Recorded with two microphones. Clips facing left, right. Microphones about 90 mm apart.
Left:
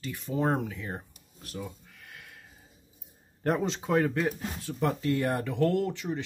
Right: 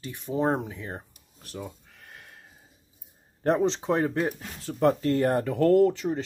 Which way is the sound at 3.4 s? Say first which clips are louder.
Right 5 dB; 30° right (ahead or behind).